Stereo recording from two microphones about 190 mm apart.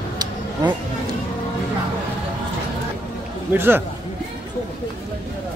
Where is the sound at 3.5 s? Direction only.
10° right (ahead or behind).